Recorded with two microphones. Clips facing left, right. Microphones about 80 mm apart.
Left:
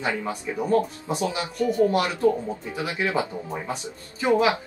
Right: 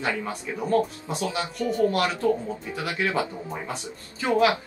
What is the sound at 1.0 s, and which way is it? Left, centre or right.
Speech, left.